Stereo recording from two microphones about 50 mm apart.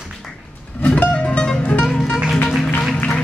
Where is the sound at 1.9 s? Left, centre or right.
Centre.